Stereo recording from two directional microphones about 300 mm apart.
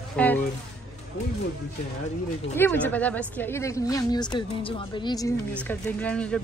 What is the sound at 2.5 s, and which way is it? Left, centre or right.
A woman's voice, centre.